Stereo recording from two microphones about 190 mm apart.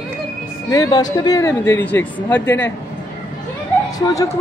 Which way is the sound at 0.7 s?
20° left (ahead or behind).